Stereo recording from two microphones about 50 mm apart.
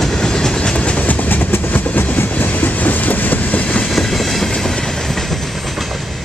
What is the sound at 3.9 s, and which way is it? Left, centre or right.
Train, centre.